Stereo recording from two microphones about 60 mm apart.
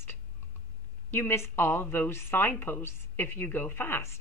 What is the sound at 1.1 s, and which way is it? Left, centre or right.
A woman's voice, left.